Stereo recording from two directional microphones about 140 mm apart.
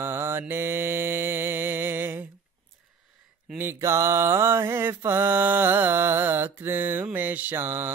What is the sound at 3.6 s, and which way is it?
Mantra, 15° right (ahead or behind).